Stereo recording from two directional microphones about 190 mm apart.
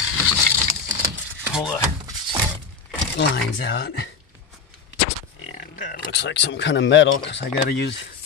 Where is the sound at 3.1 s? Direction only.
75° left (ahead or behind).